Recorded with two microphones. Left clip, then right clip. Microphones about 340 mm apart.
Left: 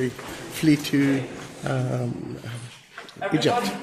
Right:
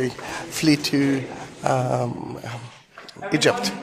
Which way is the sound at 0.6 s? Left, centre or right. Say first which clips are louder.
Right 1 dB; centre.